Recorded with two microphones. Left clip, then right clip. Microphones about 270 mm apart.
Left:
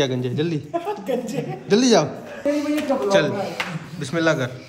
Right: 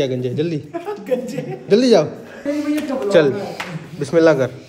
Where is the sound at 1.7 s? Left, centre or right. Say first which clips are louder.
Right 4 dB; centre.